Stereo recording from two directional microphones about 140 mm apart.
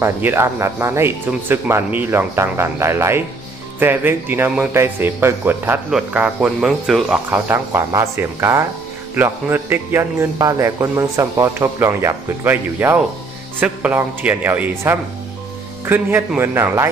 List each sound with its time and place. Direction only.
0.0 s a man's voice: 15° right (ahead or behind)
7.2 s a man's voice: 15° right (ahead or behind)